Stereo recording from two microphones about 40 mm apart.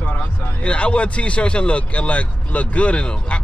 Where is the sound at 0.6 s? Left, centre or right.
Left.